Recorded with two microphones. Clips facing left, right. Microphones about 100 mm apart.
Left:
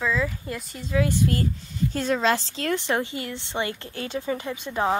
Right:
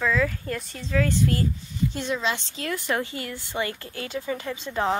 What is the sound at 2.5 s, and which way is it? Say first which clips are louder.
A woman's voice: left 2 dB; 30° left (ahead or behind).